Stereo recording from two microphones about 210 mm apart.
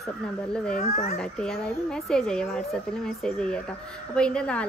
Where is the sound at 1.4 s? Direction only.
5° left (ahead or behind).